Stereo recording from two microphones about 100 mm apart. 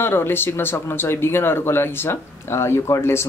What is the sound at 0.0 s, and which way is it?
Speech, 20° left (ahead or behind).